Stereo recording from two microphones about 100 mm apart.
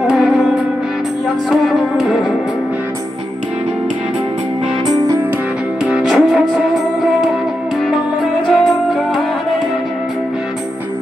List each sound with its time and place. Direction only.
0.0 s music: 5° right (ahead or behind)
1.5 s music: 5° right (ahead or behind)
4.8 s music: 40° right (ahead or behind)
5.9 s music: centre (ahead or behind)